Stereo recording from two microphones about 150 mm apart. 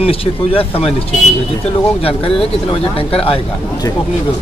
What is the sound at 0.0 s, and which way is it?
Speech, 40° left (ahead or behind).